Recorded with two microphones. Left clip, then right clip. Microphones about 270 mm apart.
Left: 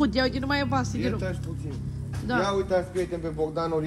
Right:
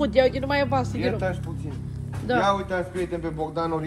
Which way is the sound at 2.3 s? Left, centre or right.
Centre.